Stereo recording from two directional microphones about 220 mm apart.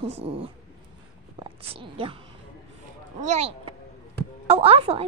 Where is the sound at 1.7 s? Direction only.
25° right (ahead or behind).